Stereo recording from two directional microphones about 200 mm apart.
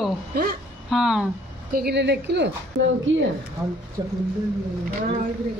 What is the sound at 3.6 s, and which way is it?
Speech, 15° right (ahead or behind).